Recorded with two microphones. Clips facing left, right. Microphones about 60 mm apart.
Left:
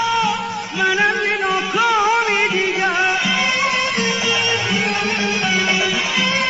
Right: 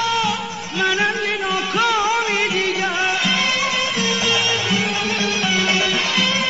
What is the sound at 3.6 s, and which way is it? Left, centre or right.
Music, left.